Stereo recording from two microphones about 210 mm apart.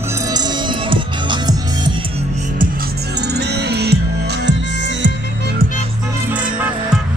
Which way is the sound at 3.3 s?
50° right (ahead or behind).